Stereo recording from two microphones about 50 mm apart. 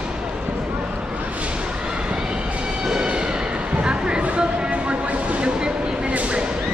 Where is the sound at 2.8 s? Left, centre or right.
Centre.